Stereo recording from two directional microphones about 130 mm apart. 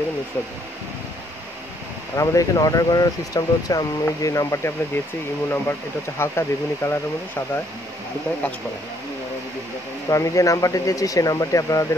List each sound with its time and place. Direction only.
2.1 s speech: 25° left (ahead or behind)
10.0 s speech: 25° left (ahead or behind)